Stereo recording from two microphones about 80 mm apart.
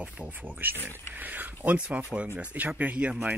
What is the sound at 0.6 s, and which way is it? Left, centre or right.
Speech, right.